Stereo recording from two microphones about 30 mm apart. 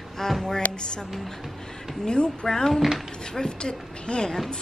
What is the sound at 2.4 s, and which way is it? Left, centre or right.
Speech, centre.